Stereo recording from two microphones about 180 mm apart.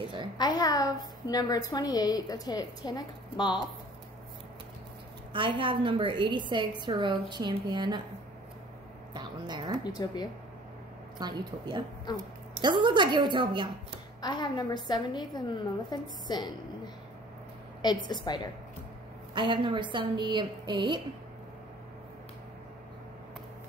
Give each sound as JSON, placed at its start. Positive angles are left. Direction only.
{"t": 0.4, "sound": "a woman's voice", "side_deg": 20}
{"t": 5.3, "sound": "a woman's voice", "side_deg": -30}
{"t": 9.1, "sound": "speech", "side_deg": -25}
{"t": 9.8, "sound": "a woman's voice", "side_deg": 25}
{"t": 11.1, "sound": "a woman's voice", "side_deg": -25}
{"t": 14.2, "sound": "a woman's voice", "side_deg": 25}
{"t": 19.3, "sound": "a woman's voice", "side_deg": -25}